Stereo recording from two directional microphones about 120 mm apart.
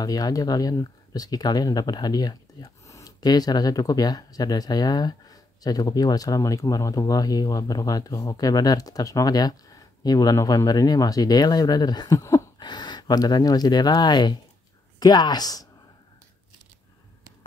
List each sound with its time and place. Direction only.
0.0 s speech: 30° left (ahead or behind)
12.2 s a sound: 25° left (ahead or behind)
12.5 s speech: 40° left (ahead or behind)